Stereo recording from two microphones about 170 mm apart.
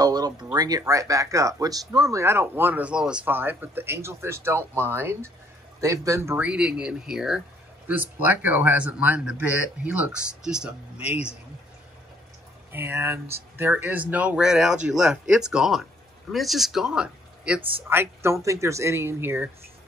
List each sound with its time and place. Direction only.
0.0 s speech: 25° right (ahead or behind); by 11.3 s 5° right (ahead or behind)
12.7 s speech: 15° right (ahead or behind)